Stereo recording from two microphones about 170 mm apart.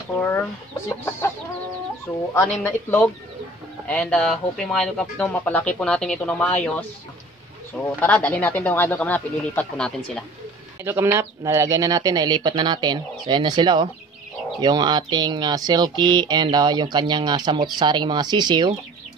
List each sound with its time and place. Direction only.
0.2 s speech: 10° left (ahead or behind)
2.6 s speech: 10° left (ahead or behind)
10.8 s speech: 15° right (ahead or behind)